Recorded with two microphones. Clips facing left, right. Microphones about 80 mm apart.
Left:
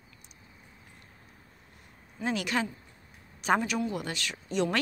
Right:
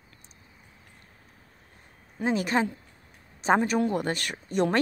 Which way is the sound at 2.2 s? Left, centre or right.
Right.